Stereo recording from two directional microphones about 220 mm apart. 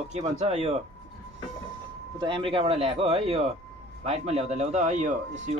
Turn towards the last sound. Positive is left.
turn(degrees=-35)  # may be behind; listen again after turning